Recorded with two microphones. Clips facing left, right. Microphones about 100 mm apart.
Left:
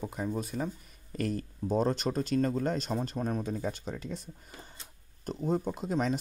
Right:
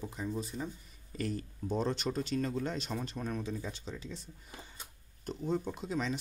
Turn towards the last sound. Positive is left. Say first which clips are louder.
# left 5 dB
turn(degrees=45)  # may be behind; listen again after turning